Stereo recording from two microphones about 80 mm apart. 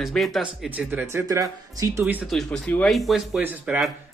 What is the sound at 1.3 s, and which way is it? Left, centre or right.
Speech, right.